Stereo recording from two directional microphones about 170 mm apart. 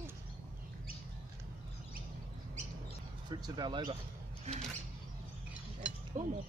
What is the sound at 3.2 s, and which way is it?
Speech, 25° right (ahead or behind).